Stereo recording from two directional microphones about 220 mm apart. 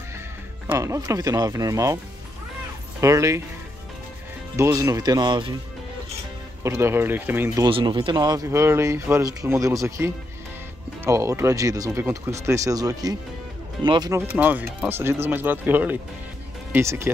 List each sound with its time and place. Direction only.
0.7 s speech: 15° right (ahead or behind)
3.0 s speech: 15° right (ahead or behind)
4.6 s speech: 10° right (ahead or behind)
6.6 s speech: 10° right (ahead or behind)